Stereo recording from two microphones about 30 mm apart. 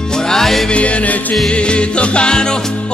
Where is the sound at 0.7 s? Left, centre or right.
Left.